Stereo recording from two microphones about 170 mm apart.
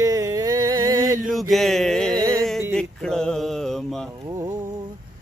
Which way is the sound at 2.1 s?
20° right (ahead or behind).